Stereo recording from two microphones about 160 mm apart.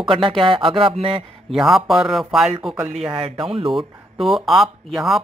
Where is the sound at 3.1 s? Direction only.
35° right (ahead or behind).